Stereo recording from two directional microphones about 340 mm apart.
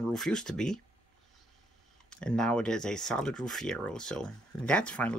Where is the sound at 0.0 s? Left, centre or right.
Centre.